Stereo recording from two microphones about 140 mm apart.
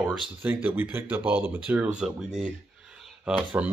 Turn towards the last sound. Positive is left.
turn(degrees=-10)  # may be behind; listen again after turning